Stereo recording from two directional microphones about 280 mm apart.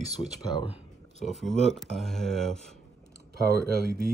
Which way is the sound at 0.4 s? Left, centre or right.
Centre.